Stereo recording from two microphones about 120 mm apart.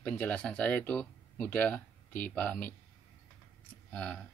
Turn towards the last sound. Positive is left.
turn(degrees=10)  # may be behind; listen again after turning